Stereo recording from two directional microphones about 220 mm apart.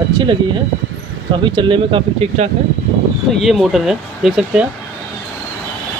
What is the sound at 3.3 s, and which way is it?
Speech, centre (ahead or behind).